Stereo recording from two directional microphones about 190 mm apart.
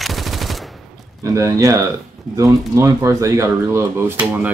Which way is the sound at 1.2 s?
15° right (ahead or behind).